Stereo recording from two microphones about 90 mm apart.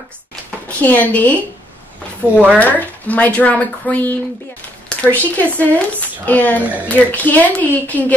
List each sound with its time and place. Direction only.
0.7 s speech: 15° left (ahead or behind)
2.5 s speech: 20° left (ahead or behind)